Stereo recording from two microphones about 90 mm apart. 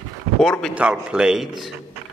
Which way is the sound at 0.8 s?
10° right (ahead or behind).